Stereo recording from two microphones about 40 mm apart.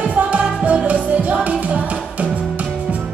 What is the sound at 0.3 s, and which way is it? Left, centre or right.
Music, right.